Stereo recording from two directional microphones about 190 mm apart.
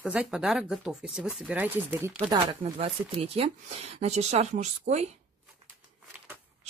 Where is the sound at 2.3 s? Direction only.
25° right (ahead or behind).